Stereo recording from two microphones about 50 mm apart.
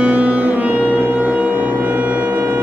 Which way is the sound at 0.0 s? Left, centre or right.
Right.